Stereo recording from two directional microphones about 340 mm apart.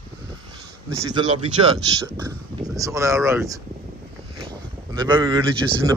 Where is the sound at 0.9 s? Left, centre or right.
Centre.